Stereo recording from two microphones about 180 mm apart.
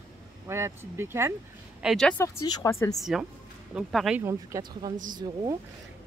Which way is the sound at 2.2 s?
20° left (ahead or behind).